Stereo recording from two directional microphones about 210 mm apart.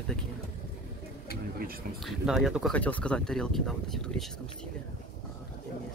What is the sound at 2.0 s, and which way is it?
Speech, centre (ahead or behind).